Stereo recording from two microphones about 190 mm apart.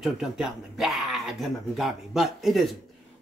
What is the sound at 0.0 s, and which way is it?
Speech, centre (ahead or behind).